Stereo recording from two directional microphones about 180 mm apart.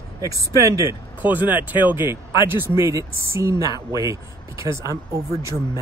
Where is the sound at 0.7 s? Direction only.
15° right (ahead or behind).